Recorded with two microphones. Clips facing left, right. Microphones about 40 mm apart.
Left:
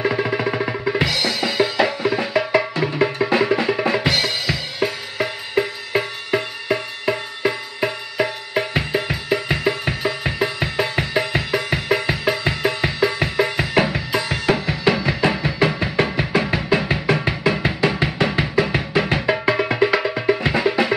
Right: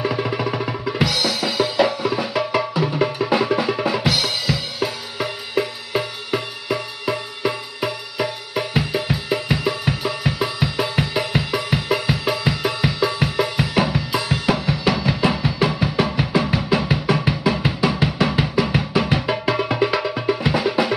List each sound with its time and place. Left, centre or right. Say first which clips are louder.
0.0 s drum: left 2 dB; left
16.3 s music: left 1 dB; left
19.3 s music: left 1 dB; left